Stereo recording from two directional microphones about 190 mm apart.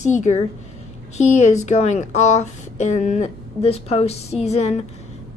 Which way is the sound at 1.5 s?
35° left (ahead or behind).